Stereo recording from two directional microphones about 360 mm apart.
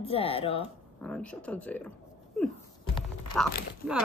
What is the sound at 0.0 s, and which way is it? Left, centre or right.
Speech, centre.